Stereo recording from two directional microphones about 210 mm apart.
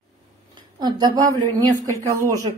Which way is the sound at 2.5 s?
25° right (ahead or behind).